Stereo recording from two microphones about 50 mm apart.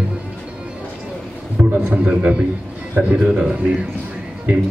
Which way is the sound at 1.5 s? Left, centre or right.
Right.